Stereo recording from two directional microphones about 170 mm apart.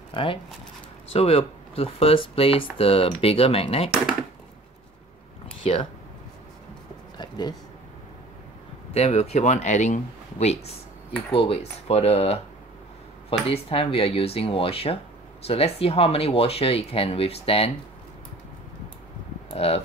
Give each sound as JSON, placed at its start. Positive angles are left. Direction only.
{"t": 0.1, "sound": "speech", "side_deg": 30}
{"t": 5.6, "sound": "speech", "side_deg": 30}
{"t": 7.2, "sound": "a sound", "side_deg": 25}
{"t": 8.9, "sound": "speech", "side_deg": 35}
{"t": 19.5, "sound": "speech", "side_deg": 35}